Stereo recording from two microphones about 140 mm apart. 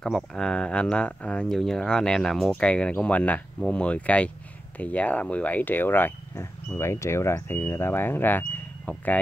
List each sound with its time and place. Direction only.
0.0 s speech: 5° left (ahead or behind)